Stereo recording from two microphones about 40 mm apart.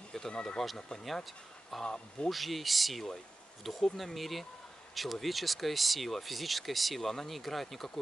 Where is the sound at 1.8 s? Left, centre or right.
Left.